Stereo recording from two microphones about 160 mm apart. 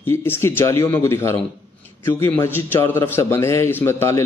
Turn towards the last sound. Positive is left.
turn(degrees=15)  # may be behind; listen again after turning